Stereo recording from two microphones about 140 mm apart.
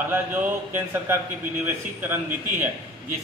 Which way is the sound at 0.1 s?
15° right (ahead or behind).